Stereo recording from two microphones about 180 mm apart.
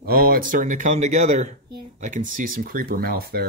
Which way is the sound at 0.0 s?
55° right (ahead or behind).